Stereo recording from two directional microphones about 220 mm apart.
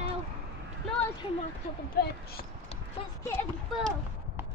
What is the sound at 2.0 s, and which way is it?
Speech, 45° left (ahead or behind).